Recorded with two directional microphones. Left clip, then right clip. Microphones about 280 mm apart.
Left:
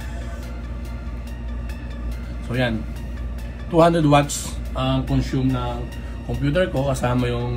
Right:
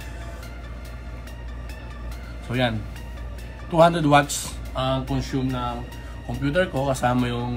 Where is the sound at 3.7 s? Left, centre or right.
Right.